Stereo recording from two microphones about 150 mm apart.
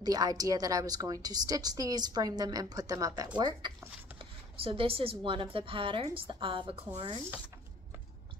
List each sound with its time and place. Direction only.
0.0 s a woman's voice: 25° right (ahead or behind)